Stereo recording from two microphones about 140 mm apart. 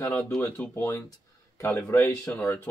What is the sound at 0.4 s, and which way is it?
Speech, 15° left (ahead or behind).